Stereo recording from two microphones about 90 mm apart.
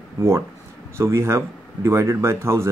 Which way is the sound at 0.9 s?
30° right (ahead or behind).